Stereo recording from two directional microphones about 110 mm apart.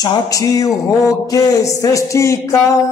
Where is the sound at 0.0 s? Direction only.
35° left (ahead or behind).